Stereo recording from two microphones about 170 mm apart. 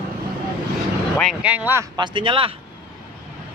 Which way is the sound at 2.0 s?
30° right (ahead or behind).